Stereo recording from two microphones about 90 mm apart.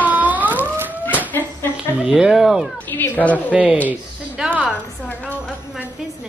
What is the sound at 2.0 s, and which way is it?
Speech, 5° right (ahead or behind).